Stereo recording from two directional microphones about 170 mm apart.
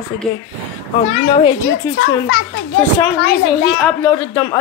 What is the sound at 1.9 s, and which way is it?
Speech, 15° left (ahead or behind).